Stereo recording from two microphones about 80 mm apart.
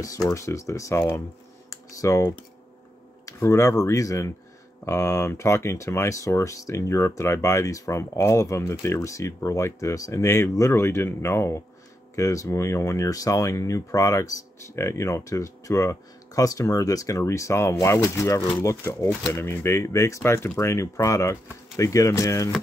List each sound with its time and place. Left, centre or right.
0.0 s speech: left
1.7 s computer keyboard: left
3.3 s speech: left
19.4 s speech: left